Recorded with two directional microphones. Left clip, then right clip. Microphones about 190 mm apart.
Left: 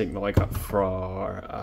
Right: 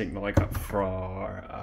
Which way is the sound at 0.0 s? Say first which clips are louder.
Left 3 dB; 20° left (ahead or behind).